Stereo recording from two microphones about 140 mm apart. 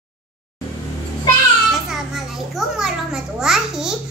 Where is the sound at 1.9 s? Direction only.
Centre (ahead or behind).